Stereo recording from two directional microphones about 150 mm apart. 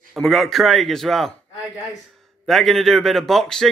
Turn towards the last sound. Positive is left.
turn(degrees=5)  # may be behind; listen again after turning